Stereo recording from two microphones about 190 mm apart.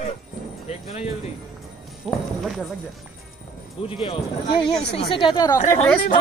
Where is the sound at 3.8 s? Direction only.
30° left (ahead or behind).